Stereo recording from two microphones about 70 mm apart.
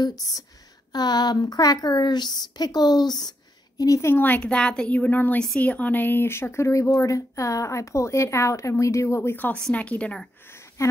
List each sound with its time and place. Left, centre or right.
0.0 s speech: left
0.9 s a woman's voice: left
4.0 s a woman's voice: left
4.4 s a woman's voice: centre; by 9.4 s left
9.8 s a woman's voice: centre
10.8 s speech: left